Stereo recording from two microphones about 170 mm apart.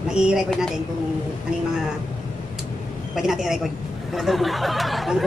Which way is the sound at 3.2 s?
Centre (ahead or behind).